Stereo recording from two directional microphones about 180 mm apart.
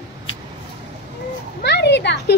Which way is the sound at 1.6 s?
70° left (ahead or behind).